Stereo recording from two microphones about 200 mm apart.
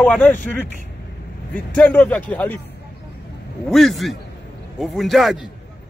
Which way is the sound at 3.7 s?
Centre (ahead or behind).